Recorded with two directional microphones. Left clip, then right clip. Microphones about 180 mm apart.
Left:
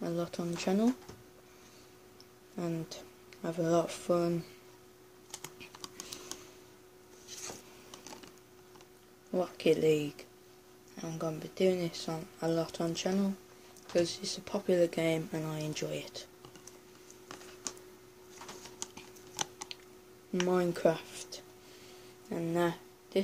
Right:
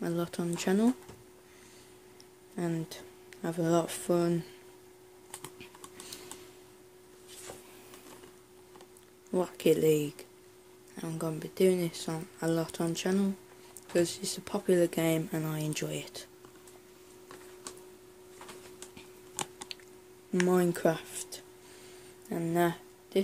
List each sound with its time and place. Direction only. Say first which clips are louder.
0.0 s speech: right 2 dB; 30° right (ahead or behind)
2.5 s speech: right 2 dB; 30° right (ahead or behind)
9.3 s speech: right 2 dB; 35° right (ahead or behind)
18.9 s squish: even; 25° right (ahead or behind)
20.3 s speech: right 3 dB; 35° right (ahead or behind)